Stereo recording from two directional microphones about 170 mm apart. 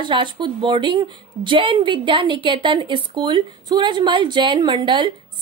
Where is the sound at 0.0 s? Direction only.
30° right (ahead or behind).